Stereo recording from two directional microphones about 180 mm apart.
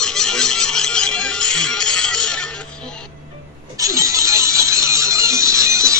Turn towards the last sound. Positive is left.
turn(degrees=-15)  # may be behind; listen again after turning